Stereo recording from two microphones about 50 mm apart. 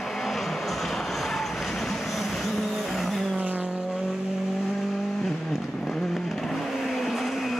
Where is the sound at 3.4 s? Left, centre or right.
Right.